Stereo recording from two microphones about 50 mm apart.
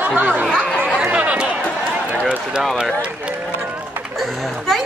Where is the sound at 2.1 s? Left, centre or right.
Right.